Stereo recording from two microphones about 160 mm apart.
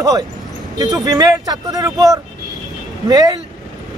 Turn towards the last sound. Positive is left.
turn(degrees=-25)  # may be behind; listen again after turning